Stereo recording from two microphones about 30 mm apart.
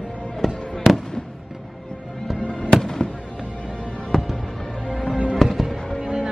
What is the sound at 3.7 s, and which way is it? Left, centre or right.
Music, left.